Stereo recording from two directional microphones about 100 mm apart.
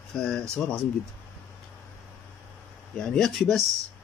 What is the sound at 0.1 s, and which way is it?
Speech, 5° left (ahead or behind).